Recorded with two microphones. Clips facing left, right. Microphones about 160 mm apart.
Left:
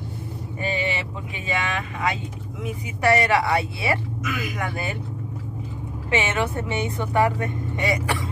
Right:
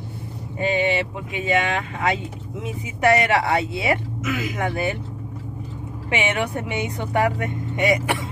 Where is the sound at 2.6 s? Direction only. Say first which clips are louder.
Right 2 dB; 20° right (ahead or behind).